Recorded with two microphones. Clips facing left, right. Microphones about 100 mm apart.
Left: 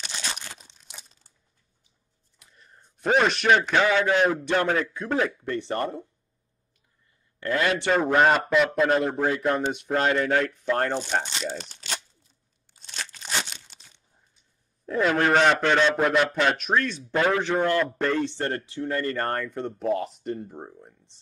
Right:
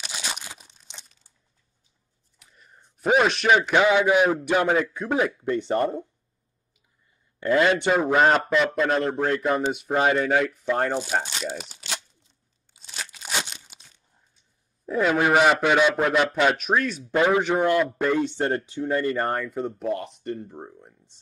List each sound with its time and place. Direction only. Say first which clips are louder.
0.0 s crunch: right 1 dB; 10° right (ahead or behind)
2.4 s a man's voice: right 1 dB; 5° right (ahead or behind)
7.3 s a man's voice: right 5 dB; 20° right (ahead or behind)
7.9 s a man's voice: left 2 dB; 5° right (ahead or behind)
12.7 s crunch: even; 5° right (ahead or behind)
13.4 s tearing: right 1 dB; centre (ahead or behind)
14.9 s speech: right 1 dB; 5° right (ahead or behind)